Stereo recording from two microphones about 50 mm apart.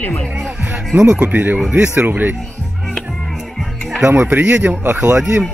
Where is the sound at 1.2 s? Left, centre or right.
Right.